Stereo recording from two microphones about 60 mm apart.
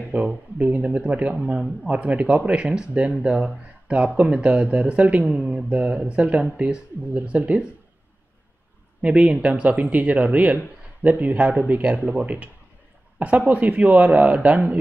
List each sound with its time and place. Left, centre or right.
0.1 s speech: right
9.0 s speech: centre